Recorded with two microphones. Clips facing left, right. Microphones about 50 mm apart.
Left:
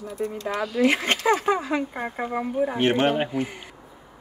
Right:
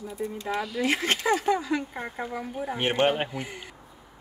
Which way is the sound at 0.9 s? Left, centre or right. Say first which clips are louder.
Left 3 dB; left.